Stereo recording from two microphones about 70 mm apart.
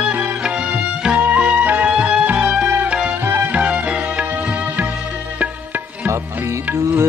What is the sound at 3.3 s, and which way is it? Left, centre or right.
Music, right.